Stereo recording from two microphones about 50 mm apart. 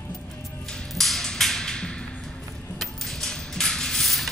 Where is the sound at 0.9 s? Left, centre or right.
Centre.